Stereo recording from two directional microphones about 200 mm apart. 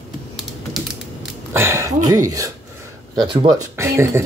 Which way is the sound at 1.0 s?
5° right (ahead or behind).